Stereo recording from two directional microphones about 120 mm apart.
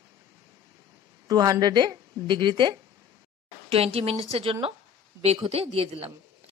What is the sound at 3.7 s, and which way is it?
Speech, 55° right (ahead or behind).